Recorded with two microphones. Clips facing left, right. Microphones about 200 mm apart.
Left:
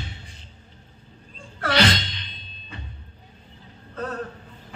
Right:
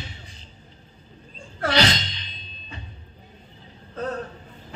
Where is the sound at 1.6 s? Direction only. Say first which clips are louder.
Even; 55° left (ahead or behind).